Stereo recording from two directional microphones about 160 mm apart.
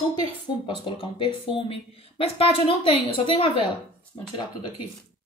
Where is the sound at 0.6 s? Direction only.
30° left (ahead or behind).